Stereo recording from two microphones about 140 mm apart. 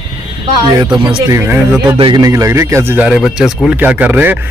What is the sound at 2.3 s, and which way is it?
Speech, 20° right (ahead or behind).